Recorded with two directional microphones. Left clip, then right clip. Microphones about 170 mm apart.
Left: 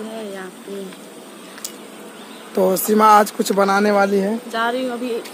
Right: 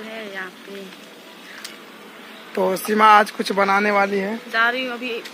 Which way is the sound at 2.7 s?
Centre (ahead or behind).